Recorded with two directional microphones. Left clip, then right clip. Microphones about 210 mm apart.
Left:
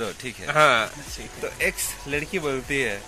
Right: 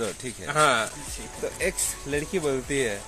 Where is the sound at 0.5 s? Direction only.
35° left (ahead or behind).